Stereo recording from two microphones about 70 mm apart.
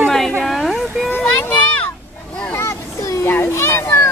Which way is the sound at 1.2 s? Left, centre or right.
Left.